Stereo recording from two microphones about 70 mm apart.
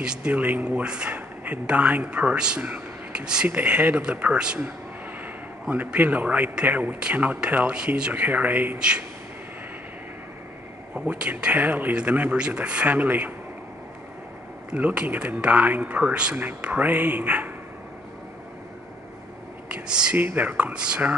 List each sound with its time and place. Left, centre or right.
0.0 s speech: centre
0.3 s a man's voice: right
8.7 s speech: centre
11.1 s a man's voice: centre
14.7 s a man's voice: centre
19.7 s speech: centre
20.2 s a man's voice: right